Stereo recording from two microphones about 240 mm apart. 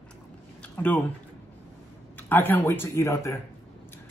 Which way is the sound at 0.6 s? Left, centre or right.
Centre.